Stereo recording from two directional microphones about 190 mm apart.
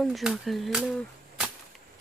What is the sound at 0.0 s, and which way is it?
Speech, centre (ahead or behind).